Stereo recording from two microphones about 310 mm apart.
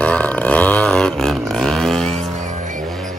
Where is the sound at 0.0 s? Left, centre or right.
Centre.